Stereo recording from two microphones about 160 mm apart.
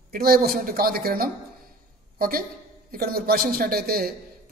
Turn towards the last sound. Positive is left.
turn(degrees=-70)  # may be behind; listen again after turning